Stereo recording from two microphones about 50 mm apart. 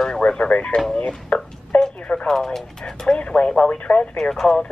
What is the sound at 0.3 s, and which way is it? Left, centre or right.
Speech, left.